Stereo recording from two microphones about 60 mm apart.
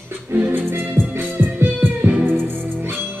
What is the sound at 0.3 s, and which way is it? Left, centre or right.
Music, right.